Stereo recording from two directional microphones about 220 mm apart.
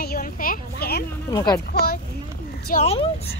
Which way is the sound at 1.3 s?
20° left (ahead or behind).